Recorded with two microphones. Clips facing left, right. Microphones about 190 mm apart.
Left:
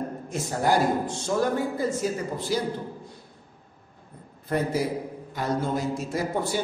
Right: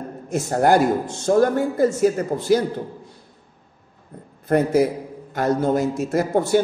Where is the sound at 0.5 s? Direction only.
55° right (ahead or behind).